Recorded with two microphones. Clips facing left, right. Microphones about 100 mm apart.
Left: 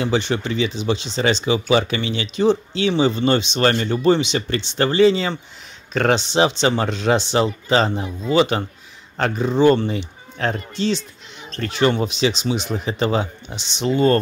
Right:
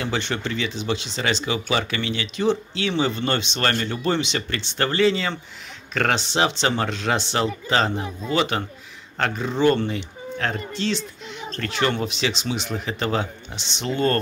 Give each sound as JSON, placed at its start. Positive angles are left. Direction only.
{"t": 0.0, "sound": "speech", "side_deg": 15}
{"t": 2.9, "sound": "speech", "side_deg": 15}